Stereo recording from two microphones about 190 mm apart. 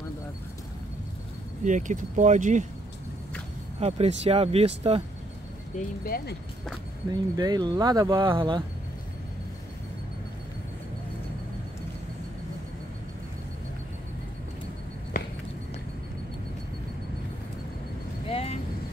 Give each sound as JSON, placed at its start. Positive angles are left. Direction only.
{"t": 1.6, "sound": "speech", "side_deg": -40}
{"t": 3.8, "sound": "speech", "side_deg": -35}
{"t": 5.7, "sound": "speech", "side_deg": 40}
{"t": 6.0, "sound": "speech", "side_deg": 50}
{"t": 7.1, "sound": "speech", "side_deg": -20}
{"t": 18.3, "sound": "vehicle", "side_deg": 30}